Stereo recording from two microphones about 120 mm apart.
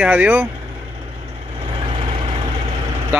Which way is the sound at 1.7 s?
50° right (ahead or behind).